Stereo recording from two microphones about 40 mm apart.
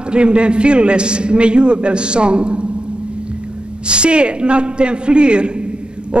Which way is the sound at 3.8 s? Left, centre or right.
Right.